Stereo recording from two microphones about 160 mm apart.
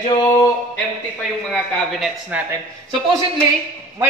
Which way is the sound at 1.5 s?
Centre (ahead or behind).